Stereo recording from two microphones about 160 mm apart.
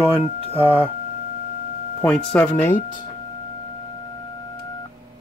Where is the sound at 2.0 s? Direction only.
5° left (ahead or behind).